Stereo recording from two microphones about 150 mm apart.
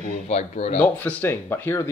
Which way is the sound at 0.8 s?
10° left (ahead or behind).